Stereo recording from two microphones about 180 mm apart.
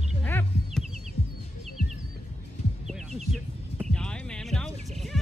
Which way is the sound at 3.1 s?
40° right (ahead or behind).